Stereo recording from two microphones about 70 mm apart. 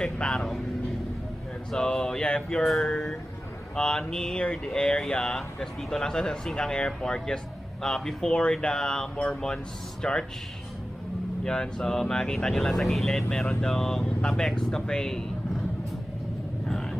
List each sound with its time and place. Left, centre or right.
0.0 s speech: centre
1.7 s speech: centre
11.4 s speech: centre